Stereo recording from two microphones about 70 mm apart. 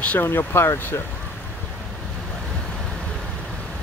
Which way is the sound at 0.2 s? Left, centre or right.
Left.